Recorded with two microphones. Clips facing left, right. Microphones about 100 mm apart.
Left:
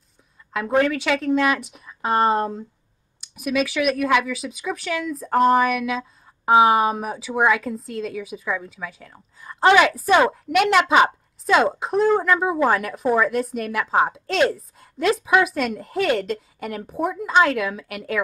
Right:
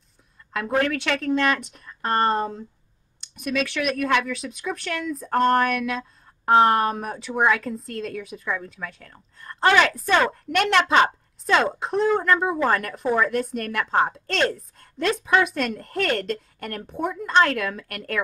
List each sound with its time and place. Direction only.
0.5 s a woman's voice: centre (ahead or behind)